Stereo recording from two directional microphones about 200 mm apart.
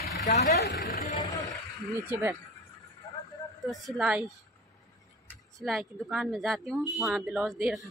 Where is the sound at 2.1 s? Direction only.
10° right (ahead or behind).